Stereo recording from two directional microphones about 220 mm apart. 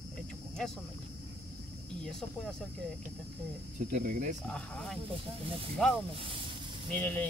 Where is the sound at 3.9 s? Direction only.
35° right (ahead or behind).